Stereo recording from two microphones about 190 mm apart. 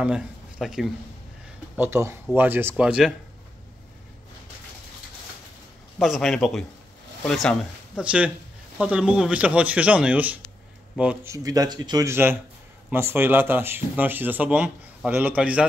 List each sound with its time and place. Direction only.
0.0 s speech: 5° right (ahead or behind)
1.8 s speech: 15° right (ahead or behind)
5.9 s speech: centre (ahead or behind)
11.3 s a man's voice: 20° right (ahead or behind)